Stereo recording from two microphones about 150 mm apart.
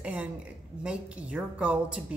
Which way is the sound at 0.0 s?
10° right (ahead or behind).